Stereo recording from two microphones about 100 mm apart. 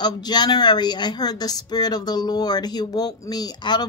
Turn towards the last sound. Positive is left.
turn(degrees=45)  # may be behind; listen again after turning